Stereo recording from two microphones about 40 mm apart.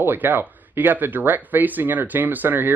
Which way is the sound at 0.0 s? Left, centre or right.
Right.